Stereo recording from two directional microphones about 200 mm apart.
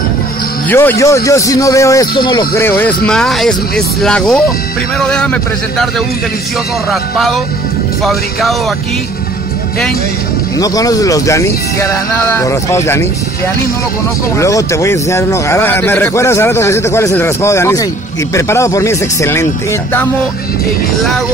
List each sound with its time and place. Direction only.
0.7 s speech: 10° left (ahead or behind)
2.5 s speech: 10° left (ahead or behind)
10.6 s speech: 15° left (ahead or behind)
14.3 s speech: 15° left (ahead or behind)